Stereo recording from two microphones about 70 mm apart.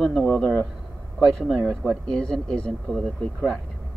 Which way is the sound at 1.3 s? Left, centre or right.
Centre.